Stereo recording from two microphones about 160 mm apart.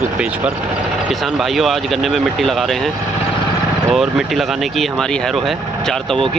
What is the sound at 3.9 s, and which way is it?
Speech, centre (ahead or behind).